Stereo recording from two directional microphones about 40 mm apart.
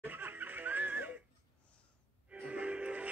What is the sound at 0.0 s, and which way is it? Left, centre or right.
Music, right.